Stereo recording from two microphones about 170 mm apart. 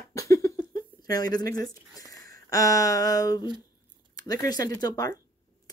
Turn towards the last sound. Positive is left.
turn(degrees=20)  # may be behind; listen again after turning